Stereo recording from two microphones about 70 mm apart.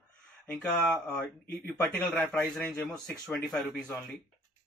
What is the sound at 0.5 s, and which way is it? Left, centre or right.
Speech, centre.